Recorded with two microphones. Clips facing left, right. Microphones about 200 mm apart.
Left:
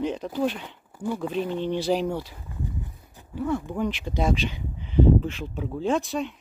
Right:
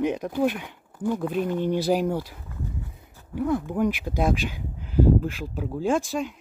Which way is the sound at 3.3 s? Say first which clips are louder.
Right 3 dB; 10° right (ahead or behind).